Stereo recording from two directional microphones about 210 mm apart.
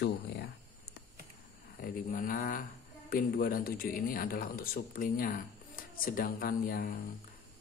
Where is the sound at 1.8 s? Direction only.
40° left (ahead or behind).